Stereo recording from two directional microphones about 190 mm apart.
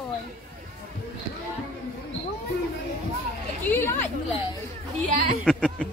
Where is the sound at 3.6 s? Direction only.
10° left (ahead or behind).